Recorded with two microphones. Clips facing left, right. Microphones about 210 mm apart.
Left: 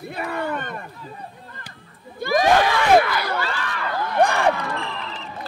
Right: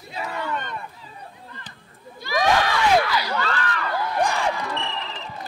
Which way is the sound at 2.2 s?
50° left (ahead or behind).